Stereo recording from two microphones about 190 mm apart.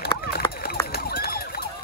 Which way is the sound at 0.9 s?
55° left (ahead or behind).